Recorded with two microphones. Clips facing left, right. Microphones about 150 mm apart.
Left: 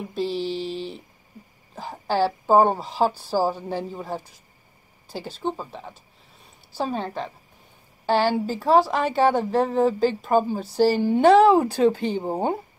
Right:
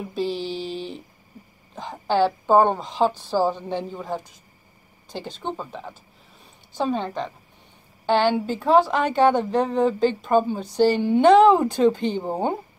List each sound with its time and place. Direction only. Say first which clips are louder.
0.1 s a sound: left 1 dB; centre (ahead or behind)
1.8 s a woman's voice: right 2 dB; 5° left (ahead or behind)
11.0 s a woman's voice: right 1 dB; 35° left (ahead or behind)
11.2 s speech: right 1 dB; 5° left (ahead or behind)